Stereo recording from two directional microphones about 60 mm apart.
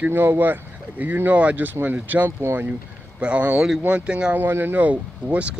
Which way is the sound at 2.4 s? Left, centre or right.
Right.